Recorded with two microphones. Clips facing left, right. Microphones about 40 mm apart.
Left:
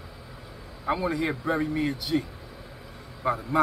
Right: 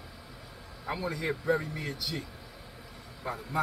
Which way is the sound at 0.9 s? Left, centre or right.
Left.